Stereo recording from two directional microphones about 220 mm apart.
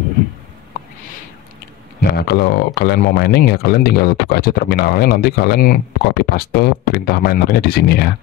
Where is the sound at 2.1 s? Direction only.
45° left (ahead or behind).